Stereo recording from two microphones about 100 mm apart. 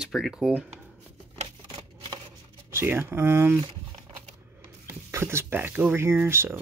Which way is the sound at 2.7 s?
25° right (ahead or behind).